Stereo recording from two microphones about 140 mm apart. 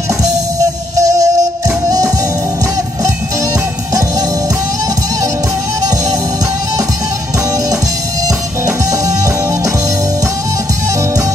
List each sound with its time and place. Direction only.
0.9 s music: 25° right (ahead or behind)